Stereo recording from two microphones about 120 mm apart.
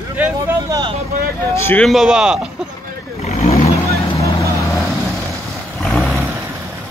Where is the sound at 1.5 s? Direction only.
20° left (ahead or behind).